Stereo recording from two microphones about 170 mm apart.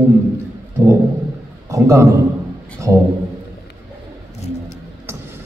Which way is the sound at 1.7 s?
20° right (ahead or behind).